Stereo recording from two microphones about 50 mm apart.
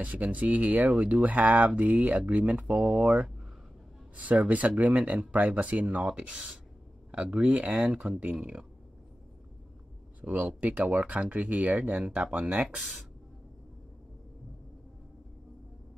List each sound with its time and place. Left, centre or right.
0.0 s speech: right
2.6 s speech: centre
3.0 s speech: right
10.3 s speech: right